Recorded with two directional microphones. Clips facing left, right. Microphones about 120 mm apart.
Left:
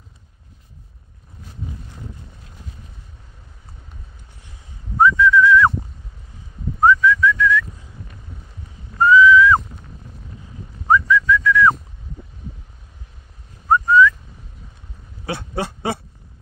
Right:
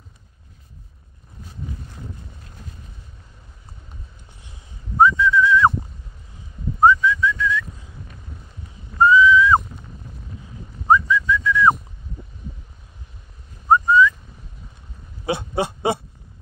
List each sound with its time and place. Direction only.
4.4 s whistling: 20° right (ahead or behind)
6.8 s whistling: 20° right (ahead or behind)
7.7 s a sound: centre (ahead or behind)
8.9 s whistling: 20° right (ahead or behind)
10.9 s whistling: 25° right (ahead or behind)
13.7 s whistling: 20° right (ahead or behind)
15.2 s oink: 20° right (ahead or behind)